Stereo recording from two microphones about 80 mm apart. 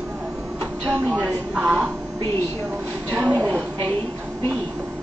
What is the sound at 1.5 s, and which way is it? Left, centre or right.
Speech, centre.